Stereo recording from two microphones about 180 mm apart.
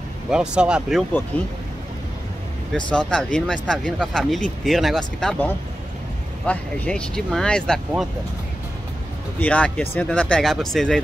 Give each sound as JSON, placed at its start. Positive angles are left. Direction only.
{"t": 0.3, "sound": "speech", "side_deg": -5}
{"t": 2.7, "sound": "speech", "side_deg": 5}
{"t": 9.4, "sound": "speech", "side_deg": 5}